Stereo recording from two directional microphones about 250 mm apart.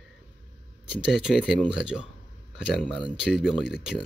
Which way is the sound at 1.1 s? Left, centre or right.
Centre.